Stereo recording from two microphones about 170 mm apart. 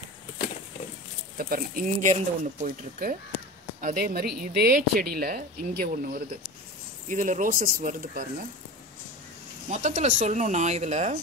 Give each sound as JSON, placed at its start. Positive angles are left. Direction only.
{"t": 1.4, "sound": "speech", "side_deg": -55}
{"t": 9.7, "sound": "speech", "side_deg": -45}